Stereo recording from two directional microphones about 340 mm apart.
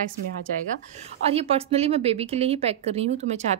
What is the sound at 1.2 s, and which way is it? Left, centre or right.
Speech, centre.